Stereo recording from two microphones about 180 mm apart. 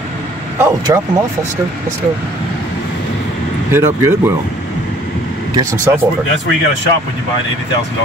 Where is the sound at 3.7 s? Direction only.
15° right (ahead or behind).